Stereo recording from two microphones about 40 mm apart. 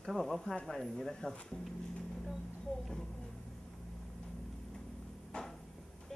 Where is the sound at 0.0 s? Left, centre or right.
Centre.